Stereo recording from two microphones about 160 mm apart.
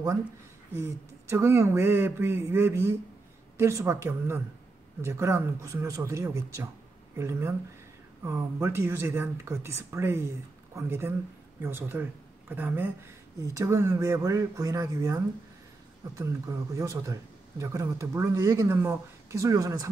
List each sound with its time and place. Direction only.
0.7 s speech: 15° right (ahead or behind)